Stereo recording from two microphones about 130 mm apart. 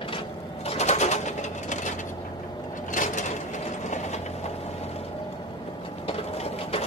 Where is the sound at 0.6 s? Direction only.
60° left (ahead or behind).